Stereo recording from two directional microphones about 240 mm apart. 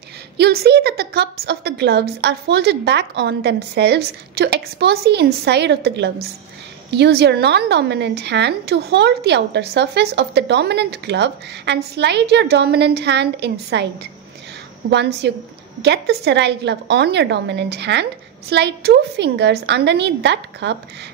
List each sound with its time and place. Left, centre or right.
0.4 s a woman's voice: right
14.9 s a woman's voice: right